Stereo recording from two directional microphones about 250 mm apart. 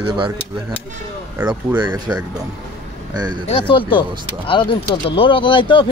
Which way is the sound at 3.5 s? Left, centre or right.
Centre.